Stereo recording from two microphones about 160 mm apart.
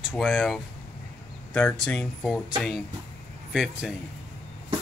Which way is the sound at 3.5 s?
5° right (ahead or behind).